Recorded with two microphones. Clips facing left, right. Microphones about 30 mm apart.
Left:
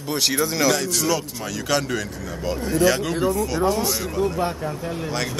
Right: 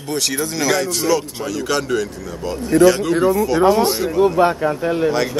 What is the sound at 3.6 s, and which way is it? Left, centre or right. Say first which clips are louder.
Speech: right 9 dB; right.